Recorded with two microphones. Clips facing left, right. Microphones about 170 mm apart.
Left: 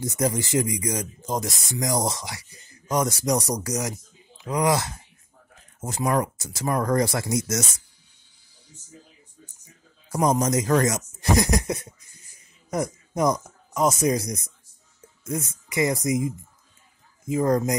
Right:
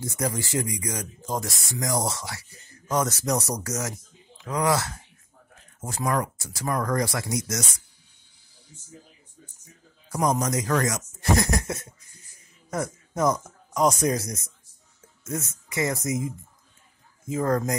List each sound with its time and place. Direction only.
0.0 s speech: 20° left (ahead or behind)
10.1 s speech: 20° left (ahead or behind)
17.3 s speech: 15° left (ahead or behind)